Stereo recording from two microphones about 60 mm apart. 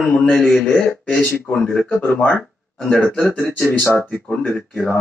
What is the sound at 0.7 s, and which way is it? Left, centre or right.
Speech, centre.